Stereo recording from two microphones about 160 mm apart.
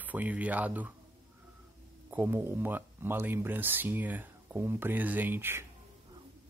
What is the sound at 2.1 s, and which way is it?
Speech, 15° right (ahead or behind).